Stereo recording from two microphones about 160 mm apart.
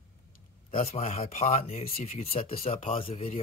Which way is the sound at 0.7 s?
40° left (ahead or behind).